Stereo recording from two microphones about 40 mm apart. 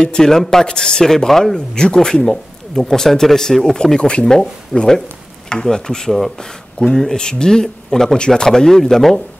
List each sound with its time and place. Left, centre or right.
0.0 s speech: centre
6.1 s speech: centre